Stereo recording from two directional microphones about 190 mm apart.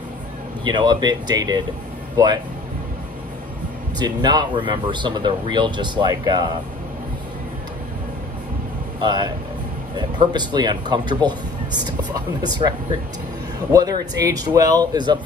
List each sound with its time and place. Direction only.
0.7 s speech: 25° right (ahead or behind)
4.0 s speech: 20° right (ahead or behind)
9.0 s speech: 25° right (ahead or behind)